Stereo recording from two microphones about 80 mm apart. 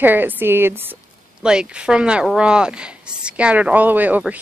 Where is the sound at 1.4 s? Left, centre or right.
Centre.